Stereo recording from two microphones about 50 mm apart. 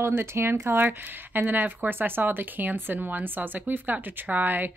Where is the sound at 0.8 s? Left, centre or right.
Right.